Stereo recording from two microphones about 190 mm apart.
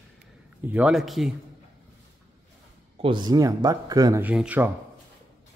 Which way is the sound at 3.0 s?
25° right (ahead or behind).